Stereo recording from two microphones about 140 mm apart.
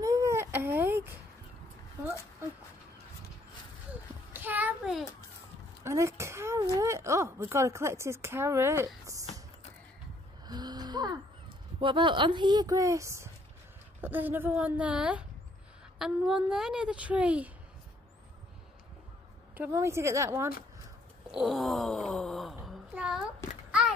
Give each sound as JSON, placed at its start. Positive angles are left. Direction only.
{"t": 0.0, "sound": "baby cry", "side_deg": -20}
{"t": 4.3, "sound": "a sound", "side_deg": -15}
{"t": 6.6, "sound": "speech", "side_deg": -20}
{"t": 10.4, "sound": "gasp", "side_deg": -30}
{"t": 11.8, "sound": "a woman's voice", "side_deg": -35}
{"t": 19.5, "sound": "a woman's voice", "side_deg": -15}
{"t": 21.3, "sound": "wail", "side_deg": -5}
{"t": 22.7, "sound": "a sound", "side_deg": -5}